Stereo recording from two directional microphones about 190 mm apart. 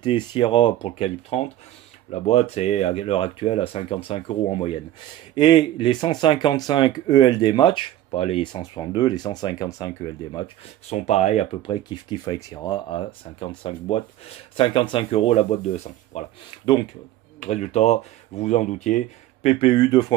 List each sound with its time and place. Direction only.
0.0 s speech: 25° left (ahead or behind)
17.4 s speech: 35° left (ahead or behind)